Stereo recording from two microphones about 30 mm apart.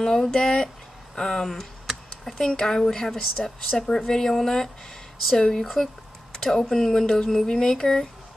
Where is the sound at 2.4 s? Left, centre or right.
Left.